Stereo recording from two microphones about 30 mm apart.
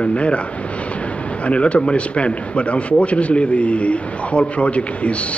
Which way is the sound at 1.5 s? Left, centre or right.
Left.